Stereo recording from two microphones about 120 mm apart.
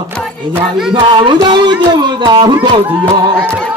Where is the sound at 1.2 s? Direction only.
40° right (ahead or behind).